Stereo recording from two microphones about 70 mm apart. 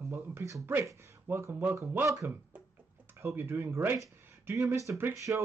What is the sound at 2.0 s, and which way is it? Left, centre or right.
Speech, right.